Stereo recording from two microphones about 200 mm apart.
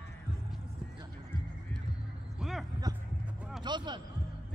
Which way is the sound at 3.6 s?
20° right (ahead or behind).